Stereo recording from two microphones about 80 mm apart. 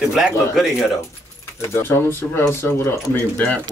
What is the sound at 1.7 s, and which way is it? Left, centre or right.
Speech, left.